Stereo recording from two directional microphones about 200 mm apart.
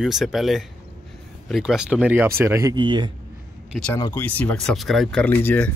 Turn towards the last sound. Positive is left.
turn(degrees=10)  # may be behind; listen again after turning